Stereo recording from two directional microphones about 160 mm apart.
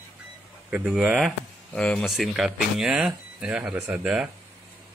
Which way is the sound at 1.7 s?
5° left (ahead or behind).